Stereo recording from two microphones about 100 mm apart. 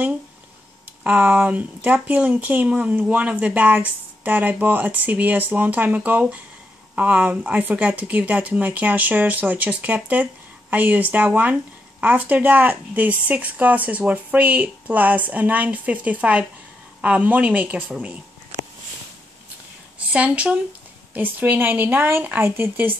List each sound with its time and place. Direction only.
1.0 s a woman's voice: 15° right (ahead or behind)
20.1 s a woman's voice: 15° right (ahead or behind)